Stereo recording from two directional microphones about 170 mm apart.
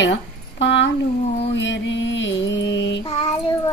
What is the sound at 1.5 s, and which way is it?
Mantra, 90° left.